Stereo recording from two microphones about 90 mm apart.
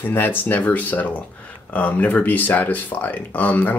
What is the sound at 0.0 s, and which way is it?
Speech, 20° left (ahead or behind).